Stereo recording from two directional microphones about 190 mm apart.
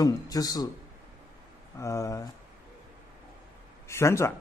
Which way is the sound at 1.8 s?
15° left (ahead or behind).